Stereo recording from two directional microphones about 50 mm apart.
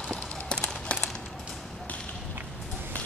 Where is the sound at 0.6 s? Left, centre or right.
Left.